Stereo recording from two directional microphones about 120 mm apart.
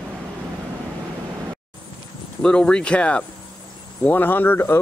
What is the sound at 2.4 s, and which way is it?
Speech, 5° left (ahead or behind).